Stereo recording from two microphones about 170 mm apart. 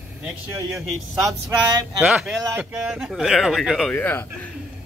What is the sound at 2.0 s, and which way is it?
Speech, 5° right (ahead or behind).